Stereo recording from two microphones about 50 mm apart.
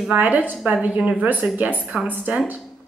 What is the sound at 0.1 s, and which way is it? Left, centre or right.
A woman's voice, right.